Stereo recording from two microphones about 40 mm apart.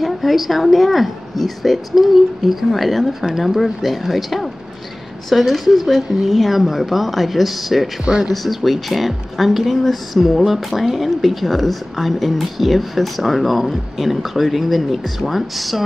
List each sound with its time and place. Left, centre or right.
0.0 s speech: centre
8.0 s speech: centre
8.3 s speech: centre